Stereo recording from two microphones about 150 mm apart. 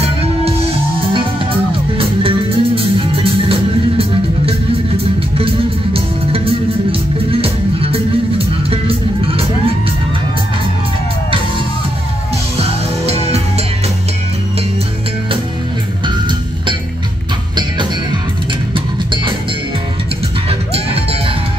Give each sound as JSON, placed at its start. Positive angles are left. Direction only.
{"t": 1.1, "sound": "music", "side_deg": -35}
{"t": 12.5, "sound": "music", "side_deg": -45}
{"t": 20.4, "sound": "music", "side_deg": -40}